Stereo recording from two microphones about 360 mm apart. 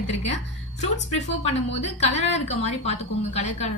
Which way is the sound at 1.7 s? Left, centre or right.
Centre.